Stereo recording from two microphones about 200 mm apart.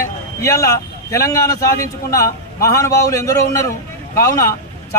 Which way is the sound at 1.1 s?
15° left (ahead or behind).